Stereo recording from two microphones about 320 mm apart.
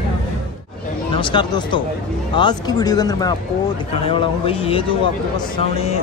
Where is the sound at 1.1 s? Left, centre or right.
Centre.